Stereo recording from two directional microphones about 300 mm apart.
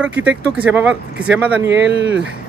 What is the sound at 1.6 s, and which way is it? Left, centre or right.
Speech, right.